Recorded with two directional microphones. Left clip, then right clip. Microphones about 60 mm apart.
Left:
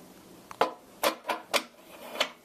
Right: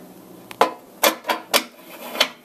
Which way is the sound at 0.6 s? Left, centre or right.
Centre.